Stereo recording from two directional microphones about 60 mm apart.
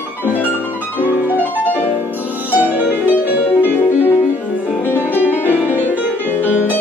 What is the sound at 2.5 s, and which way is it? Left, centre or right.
Music, right.